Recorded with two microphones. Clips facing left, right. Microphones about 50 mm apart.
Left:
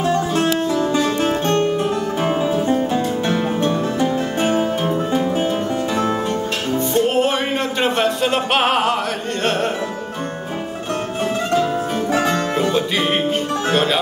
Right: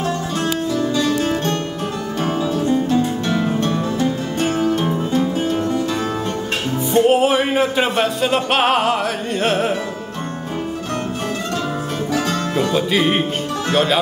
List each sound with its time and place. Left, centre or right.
0.1 s music: left
6.9 s music: centre
12.3 s music: centre
12.7 s music: centre
13.7 s speech: centre